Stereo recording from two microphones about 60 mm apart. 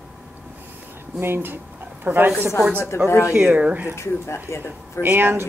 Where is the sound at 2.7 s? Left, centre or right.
Left.